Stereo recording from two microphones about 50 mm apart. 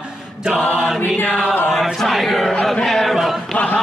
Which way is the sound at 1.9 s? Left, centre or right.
Centre.